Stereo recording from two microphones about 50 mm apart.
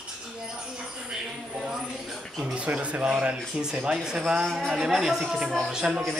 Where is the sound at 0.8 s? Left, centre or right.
Centre.